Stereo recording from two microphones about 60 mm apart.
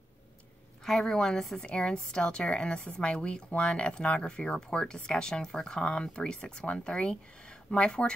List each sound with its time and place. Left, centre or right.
0.8 s a woman's voice: centre